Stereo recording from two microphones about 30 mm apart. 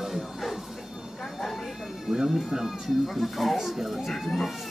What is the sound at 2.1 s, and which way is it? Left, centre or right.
Speech, centre.